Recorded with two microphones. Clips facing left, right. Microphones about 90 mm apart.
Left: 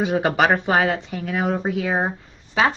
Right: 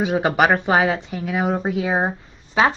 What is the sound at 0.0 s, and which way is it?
Speech, 5° right (ahead or behind).